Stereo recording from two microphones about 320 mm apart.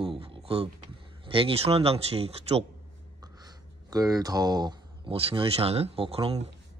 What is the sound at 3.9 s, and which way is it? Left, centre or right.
A man's voice, centre.